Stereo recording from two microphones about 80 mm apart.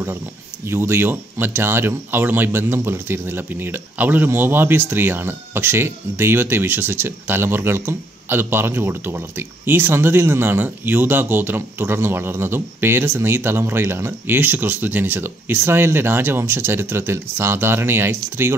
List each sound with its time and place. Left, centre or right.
0.7 s speech: right